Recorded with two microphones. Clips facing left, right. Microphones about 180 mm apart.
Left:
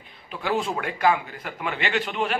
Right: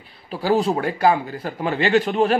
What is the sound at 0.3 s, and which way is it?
A man's voice, 35° right (ahead or behind).